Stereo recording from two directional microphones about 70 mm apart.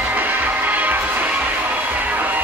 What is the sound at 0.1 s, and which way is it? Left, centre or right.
Music, right.